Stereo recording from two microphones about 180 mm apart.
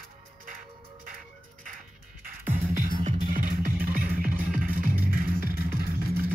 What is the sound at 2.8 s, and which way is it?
Music, 50° right (ahead or behind).